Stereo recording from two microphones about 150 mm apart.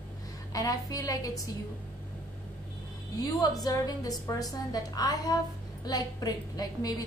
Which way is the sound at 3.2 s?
25° left (ahead or behind).